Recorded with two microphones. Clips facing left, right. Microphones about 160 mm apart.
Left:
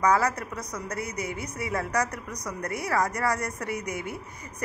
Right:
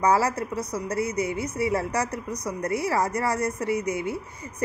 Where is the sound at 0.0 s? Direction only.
30° right (ahead or behind).